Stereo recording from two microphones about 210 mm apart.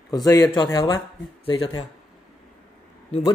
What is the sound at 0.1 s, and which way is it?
A man's voice, 15° left (ahead or behind).